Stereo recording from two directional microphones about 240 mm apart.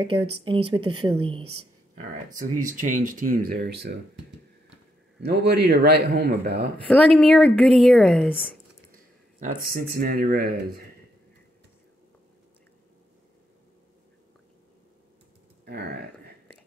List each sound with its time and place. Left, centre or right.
0.0 s speech: right
2.6 s speech: right
5.2 s a man's voice: right
7.2 s a woman's voice: centre
8.9 s speech: right
15.6 s a sound: right